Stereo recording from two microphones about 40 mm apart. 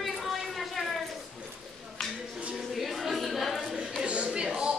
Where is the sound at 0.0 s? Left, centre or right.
Centre.